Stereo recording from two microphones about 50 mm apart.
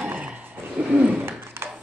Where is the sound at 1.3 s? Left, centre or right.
Right.